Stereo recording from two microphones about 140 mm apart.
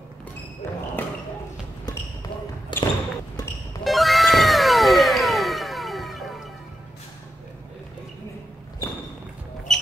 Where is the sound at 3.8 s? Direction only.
Centre (ahead or behind).